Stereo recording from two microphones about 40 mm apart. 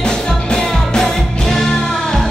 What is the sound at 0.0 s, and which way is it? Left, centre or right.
Music, centre.